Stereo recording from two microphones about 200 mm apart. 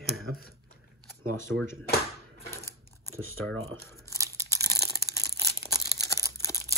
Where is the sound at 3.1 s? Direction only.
90° right.